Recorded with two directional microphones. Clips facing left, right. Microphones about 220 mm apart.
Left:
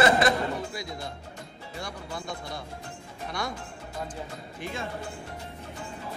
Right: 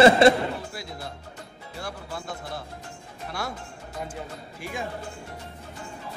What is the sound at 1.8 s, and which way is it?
Music, 5° right (ahead or behind).